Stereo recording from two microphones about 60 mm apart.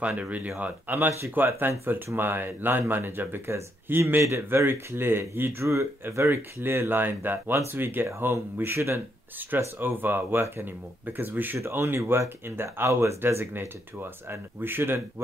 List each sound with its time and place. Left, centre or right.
0.0 s speech: right
0.9 s speech: right
8.7 s speech: right
11.5 s speech: right
12.7 s speech: right
13.2 s speech: right